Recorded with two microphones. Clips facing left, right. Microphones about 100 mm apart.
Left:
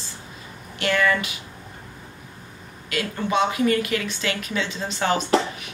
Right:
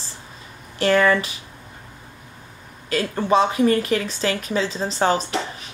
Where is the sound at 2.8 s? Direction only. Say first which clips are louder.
Right 5 dB; 35° right (ahead or behind).